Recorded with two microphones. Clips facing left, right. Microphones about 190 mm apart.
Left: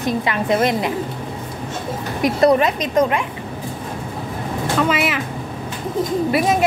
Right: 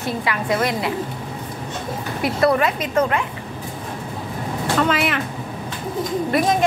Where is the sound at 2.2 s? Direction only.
20° left (ahead or behind).